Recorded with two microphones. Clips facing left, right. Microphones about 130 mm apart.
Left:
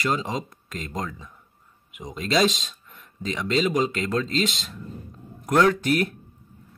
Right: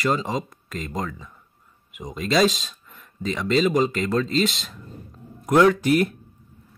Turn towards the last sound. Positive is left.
turn(degrees=-10)  # may be behind; listen again after turning